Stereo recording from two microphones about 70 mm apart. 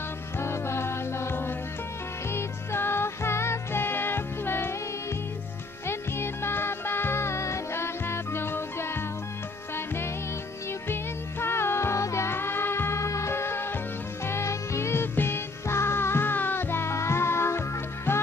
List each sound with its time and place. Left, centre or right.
0.4 s music: left
5.9 s music: left
10.9 s music: left